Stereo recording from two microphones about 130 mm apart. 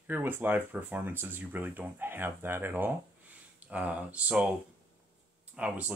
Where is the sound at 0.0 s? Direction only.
15° right (ahead or behind).